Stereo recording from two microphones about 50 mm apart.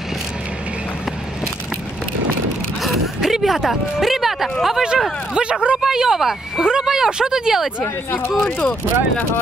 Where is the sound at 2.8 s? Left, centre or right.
Centre.